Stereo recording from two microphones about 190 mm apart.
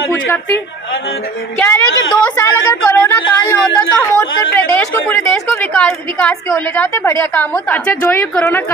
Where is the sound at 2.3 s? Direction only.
10° left (ahead or behind).